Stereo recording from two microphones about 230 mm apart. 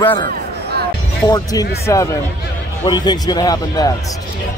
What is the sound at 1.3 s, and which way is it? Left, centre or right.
Speech, centre.